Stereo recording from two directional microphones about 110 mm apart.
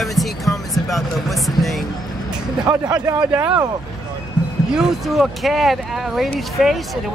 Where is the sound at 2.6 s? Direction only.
35° right (ahead or behind).